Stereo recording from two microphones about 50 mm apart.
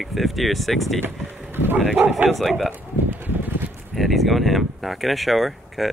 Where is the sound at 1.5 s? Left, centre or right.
Right.